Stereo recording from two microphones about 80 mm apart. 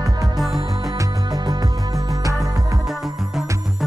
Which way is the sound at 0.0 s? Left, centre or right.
Right.